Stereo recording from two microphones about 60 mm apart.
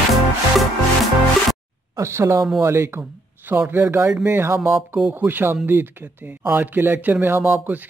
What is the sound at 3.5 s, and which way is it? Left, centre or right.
Speech, right.